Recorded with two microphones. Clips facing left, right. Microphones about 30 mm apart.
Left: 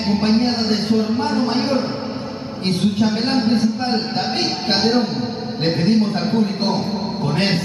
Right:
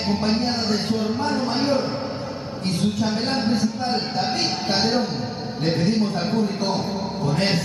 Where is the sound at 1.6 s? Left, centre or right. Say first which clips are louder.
Left 2 dB; left.